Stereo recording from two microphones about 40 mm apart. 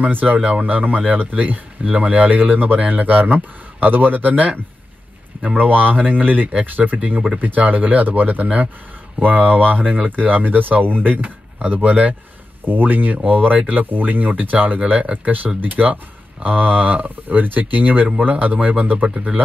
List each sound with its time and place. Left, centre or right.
0.0 s speech: right
0.4 s speech: right
5.6 s speech: right
12.6 s speech: right
18.9 s speech: right